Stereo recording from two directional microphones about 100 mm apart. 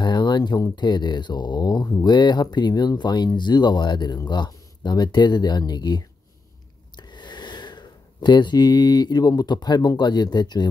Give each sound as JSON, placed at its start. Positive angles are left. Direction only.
{"t": 0.0, "sound": "speech", "side_deg": 45}